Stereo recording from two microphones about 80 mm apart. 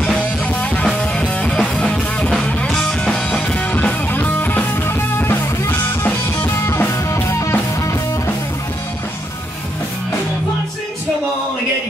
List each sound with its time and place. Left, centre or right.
0.6 s music: centre; by 7.5 s left